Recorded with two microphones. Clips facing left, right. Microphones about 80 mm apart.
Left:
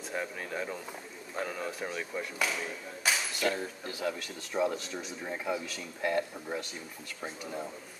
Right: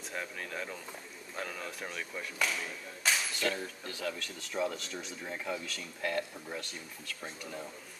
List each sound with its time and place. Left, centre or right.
0.1 s speech: centre